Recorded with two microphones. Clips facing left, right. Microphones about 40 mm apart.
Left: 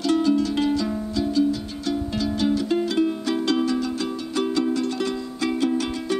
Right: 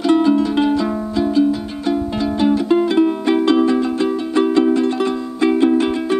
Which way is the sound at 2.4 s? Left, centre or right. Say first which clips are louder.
Right 8 dB; right.